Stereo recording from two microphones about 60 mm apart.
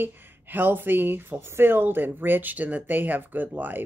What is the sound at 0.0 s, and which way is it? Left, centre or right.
Speech, right.